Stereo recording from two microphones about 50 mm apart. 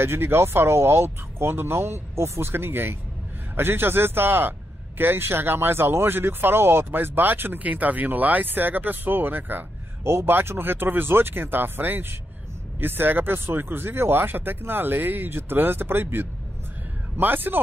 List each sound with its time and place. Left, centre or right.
0.0 s a man's voice: right
7.6 s speech: right
10.0 s a man's voice: right